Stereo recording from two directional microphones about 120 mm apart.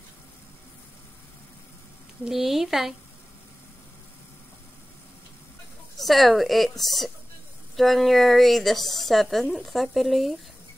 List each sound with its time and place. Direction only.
2.2 s a woman's voice: centre (ahead or behind)
5.9 s a woman's voice: centre (ahead or behind)